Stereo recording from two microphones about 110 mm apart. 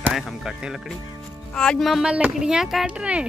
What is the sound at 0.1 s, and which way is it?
Speech, centre (ahead or behind).